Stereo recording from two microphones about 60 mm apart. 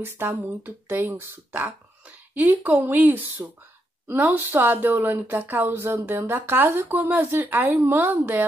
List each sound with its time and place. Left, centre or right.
0.2 s speech: right
1.7 s speech: right